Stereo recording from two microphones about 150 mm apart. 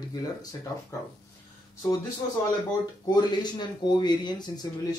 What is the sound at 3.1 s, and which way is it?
Speech, 30° left (ahead or behind).